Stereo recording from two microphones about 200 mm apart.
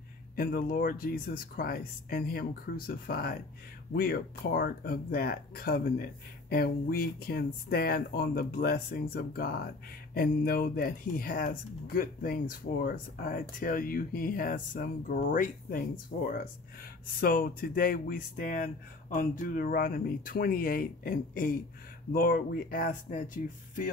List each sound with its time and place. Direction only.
0.4 s speech: 45° left (ahead or behind)
17.2 s speech: 45° left (ahead or behind)